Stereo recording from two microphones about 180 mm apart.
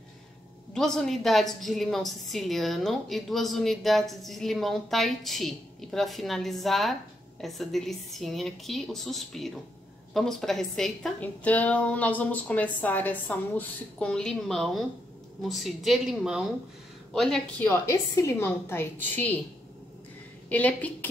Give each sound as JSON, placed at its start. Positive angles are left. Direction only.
{"t": 0.7, "sound": "a woman's voice", "side_deg": 5}
{"t": 20.4, "sound": "a woman's voice", "side_deg": 10}